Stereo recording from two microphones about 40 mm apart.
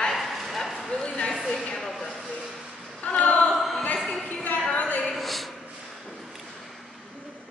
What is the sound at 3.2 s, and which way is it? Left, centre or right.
Choir, left.